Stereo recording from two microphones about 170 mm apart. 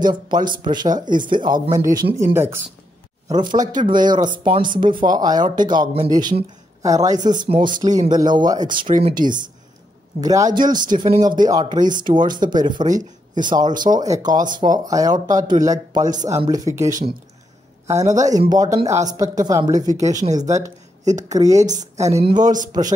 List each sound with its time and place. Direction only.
0.1 s speech: 25° right (ahead or behind)
3.3 s speech: 25° right (ahead or behind)
17.9 s speech: 45° right (ahead or behind)
18.5 s speech: 25° right (ahead or behind)
21.0 s speech: 45° right (ahead or behind)
21.4 s speech: 20° right (ahead or behind)
21.6 s speech: 45° right (ahead or behind)
22.2 s speech: 25° right (ahead or behind)